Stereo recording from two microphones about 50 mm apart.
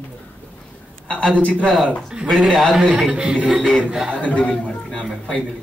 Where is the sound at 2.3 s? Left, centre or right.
Centre.